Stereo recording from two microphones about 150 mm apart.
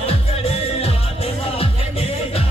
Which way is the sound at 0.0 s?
40° left (ahead or behind).